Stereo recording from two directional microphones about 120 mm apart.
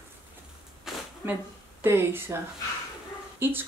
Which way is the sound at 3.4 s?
20° right (ahead or behind).